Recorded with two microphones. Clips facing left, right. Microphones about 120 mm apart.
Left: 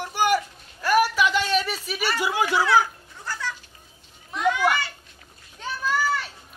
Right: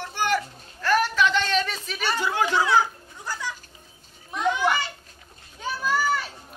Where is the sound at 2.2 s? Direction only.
10° left (ahead or behind).